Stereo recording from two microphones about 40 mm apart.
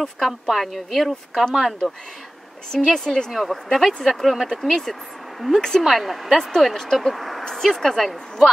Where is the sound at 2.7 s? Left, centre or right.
Centre.